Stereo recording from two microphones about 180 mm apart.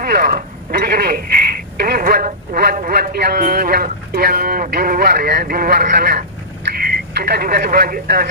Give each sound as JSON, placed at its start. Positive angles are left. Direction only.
{"t": 0.0, "sound": "speech", "side_deg": -55}